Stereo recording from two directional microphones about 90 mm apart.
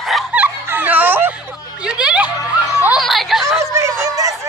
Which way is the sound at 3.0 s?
Centre (ahead or behind).